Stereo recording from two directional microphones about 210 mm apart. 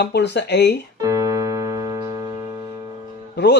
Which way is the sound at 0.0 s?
55° left (ahead or behind).